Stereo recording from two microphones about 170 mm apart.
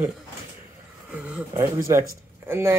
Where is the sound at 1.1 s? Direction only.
10° right (ahead or behind).